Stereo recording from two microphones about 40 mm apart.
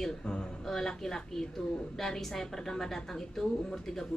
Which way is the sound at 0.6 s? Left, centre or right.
Centre.